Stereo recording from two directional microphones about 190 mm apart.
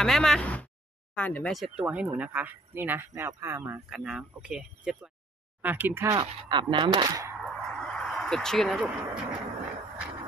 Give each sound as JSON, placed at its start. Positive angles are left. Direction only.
{"t": 0.0, "sound": "speech", "side_deg": 0}
{"t": 7.3, "sound": "a sound", "side_deg": 0}
{"t": 8.8, "sound": "speech", "side_deg": -5}